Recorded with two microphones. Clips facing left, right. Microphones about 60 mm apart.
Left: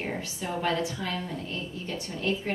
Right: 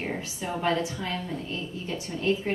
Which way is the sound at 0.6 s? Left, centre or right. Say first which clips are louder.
Right 2 dB; centre.